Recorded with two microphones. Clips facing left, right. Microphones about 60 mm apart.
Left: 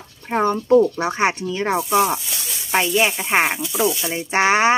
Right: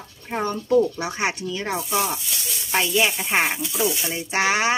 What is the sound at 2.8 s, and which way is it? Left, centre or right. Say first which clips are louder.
Speech: left 2 dB; left.